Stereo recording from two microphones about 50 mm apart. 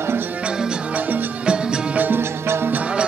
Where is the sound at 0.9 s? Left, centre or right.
Right.